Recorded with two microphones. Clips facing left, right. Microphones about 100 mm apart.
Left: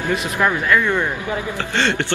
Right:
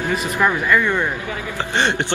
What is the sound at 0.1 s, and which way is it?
Speech, centre (ahead or behind).